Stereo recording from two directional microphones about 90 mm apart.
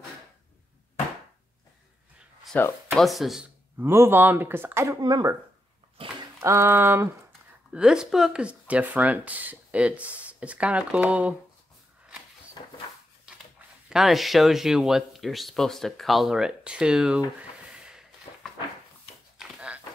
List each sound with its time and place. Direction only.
2.5 s speech: 20° left (ahead or behind)
3.0 s speech: centre (ahead or behind)
3.7 s speech: 30° right (ahead or behind)
5.0 s speech: 45° right (ahead or behind)
6.0 s a sound: 80° right
6.4 s speech: 30° right (ahead or behind)
7.7 s speech: 10° right (ahead or behind)
13.8 s speech: 5° right (ahead or behind)
19.3 s a sound: 10° right (ahead or behind)